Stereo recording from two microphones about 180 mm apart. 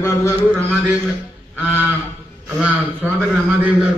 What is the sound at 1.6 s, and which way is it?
A man's voice, 10° right (ahead or behind).